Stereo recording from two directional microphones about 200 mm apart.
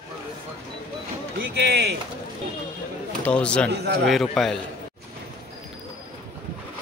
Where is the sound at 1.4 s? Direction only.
55° right (ahead or behind).